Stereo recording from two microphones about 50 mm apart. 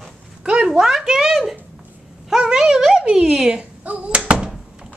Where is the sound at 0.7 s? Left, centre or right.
Centre.